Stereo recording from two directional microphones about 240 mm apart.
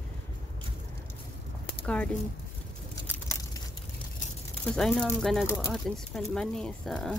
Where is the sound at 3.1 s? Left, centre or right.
Centre.